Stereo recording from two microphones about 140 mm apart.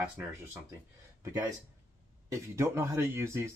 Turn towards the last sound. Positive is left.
turn(degrees=-15)  # may be behind; listen again after turning